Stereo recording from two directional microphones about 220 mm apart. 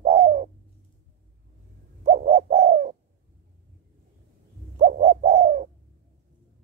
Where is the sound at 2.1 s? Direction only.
35° right (ahead or behind).